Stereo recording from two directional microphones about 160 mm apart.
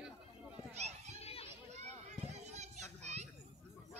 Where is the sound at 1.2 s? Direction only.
40° left (ahead or behind).